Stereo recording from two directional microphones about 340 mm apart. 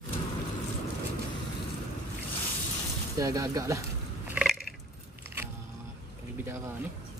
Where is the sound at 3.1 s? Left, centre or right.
Centre.